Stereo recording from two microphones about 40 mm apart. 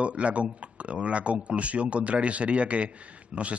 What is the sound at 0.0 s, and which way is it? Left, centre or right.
A man's voice, right.